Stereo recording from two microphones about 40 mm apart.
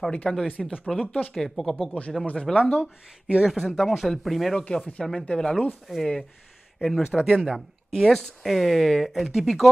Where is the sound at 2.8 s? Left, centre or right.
Right.